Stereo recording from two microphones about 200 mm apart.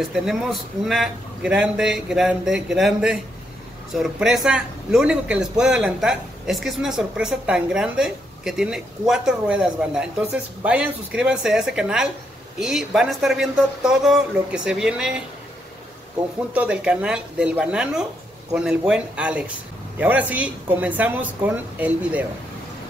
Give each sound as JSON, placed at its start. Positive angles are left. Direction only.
{"t": 0.1, "sound": "a man's voice", "side_deg": 0}
{"t": 16.5, "sound": "a man's voice", "side_deg": -5}